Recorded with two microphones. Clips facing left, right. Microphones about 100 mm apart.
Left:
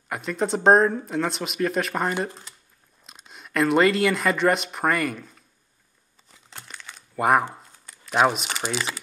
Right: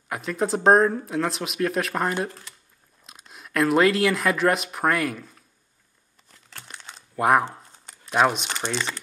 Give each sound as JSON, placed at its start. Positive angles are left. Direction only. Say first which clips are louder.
{"t": 0.1, "sound": "speech", "louder": "even", "side_deg": 0}
{"t": 2.2, "sound": "speech", "louder": "even", "side_deg": 20}
{"t": 3.0, "sound": "speech", "louder": "even", "side_deg": 0}
{"t": 7.2, "sound": "speech", "louder": "even", "side_deg": 0}